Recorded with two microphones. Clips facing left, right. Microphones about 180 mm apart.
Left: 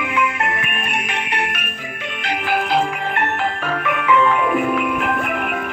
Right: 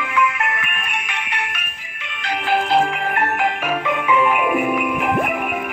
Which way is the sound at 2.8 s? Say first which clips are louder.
Right 1 dB; 10° right (ahead or behind).